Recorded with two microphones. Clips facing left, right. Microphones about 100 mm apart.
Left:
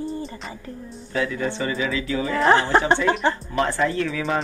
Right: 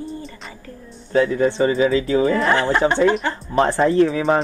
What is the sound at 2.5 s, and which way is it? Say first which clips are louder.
Speech: even; 30° left (ahead or behind).